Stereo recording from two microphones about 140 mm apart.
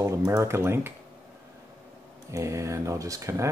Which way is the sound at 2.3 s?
20° right (ahead or behind).